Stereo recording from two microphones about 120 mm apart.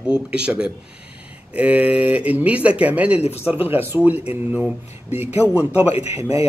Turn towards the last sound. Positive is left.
turn(degrees=-30)  # may be behind; listen again after turning